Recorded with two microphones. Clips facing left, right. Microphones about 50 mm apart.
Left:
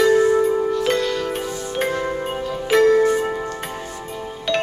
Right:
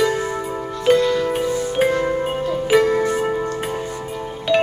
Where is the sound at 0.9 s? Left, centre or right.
Centre.